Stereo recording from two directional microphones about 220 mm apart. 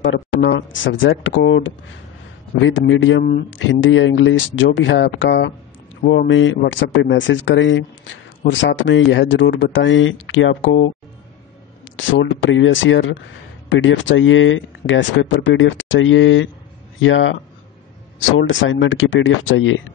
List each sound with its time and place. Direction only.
0.1 s speech: 55° left (ahead or behind)
12.0 s speech: 60° left (ahead or behind)
18.4 s speech: 60° left (ahead or behind)